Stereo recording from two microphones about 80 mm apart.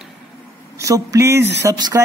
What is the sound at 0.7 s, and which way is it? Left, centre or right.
Speech, right.